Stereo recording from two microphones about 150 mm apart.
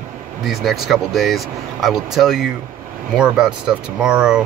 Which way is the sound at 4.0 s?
5° right (ahead or behind).